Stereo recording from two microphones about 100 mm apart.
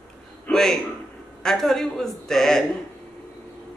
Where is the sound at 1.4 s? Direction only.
5° left (ahead or behind).